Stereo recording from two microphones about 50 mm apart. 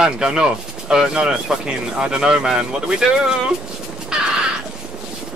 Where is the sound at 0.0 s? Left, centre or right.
Centre.